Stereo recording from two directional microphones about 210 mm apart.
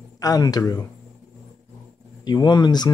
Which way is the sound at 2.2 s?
20° left (ahead or behind).